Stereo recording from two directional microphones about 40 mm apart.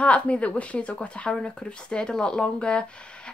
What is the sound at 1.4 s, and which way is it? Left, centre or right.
A woman's voice, left.